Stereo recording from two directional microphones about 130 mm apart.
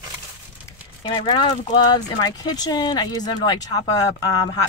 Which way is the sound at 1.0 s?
35° left (ahead or behind).